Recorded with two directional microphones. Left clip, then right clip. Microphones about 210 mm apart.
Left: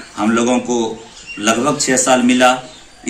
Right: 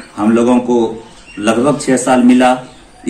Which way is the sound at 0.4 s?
5° right (ahead or behind).